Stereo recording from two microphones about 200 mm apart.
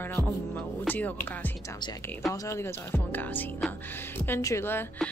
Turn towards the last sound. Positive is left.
turn(degrees=10)  # may be behind; listen again after turning